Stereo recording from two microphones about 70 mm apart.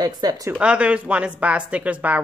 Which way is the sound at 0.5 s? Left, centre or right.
Centre.